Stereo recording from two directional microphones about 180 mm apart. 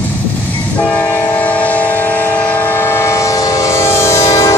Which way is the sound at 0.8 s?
10° left (ahead or behind).